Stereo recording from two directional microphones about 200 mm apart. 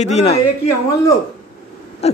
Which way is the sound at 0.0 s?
35° left (ahead or behind).